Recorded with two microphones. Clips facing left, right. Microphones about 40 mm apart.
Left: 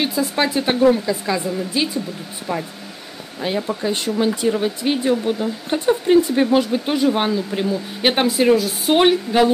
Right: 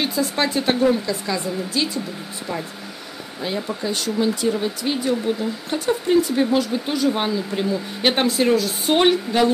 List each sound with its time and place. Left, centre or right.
0.0 s speech: centre
3.3 s speech: centre
7.1 s speech: centre